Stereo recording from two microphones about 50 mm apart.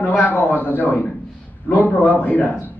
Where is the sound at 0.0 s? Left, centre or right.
Left.